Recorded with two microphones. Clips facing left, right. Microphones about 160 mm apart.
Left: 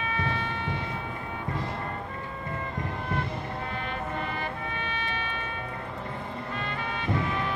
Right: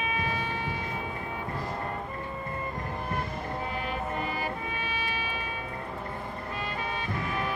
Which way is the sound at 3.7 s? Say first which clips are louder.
Right 1 dB; 10° right (ahead or behind).